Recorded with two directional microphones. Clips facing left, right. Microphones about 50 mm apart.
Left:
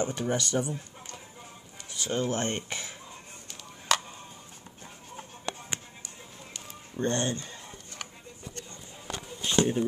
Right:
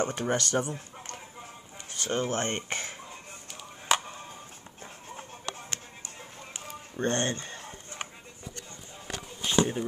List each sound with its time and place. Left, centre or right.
0.0 s speech: right
3.9 s music: centre
5.4 s music: left
6.5 s chicken: right
9.4 s a sound: centre